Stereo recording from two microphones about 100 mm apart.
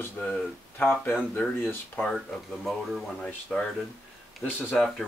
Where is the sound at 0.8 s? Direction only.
20° left (ahead or behind).